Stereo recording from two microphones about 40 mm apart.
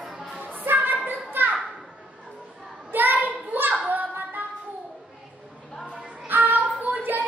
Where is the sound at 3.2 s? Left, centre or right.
Right.